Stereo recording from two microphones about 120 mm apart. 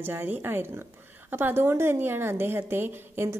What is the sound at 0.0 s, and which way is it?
A woman's voice, 20° right (ahead or behind).